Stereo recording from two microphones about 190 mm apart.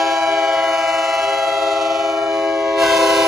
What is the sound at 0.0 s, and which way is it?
Train, centre (ahead or behind).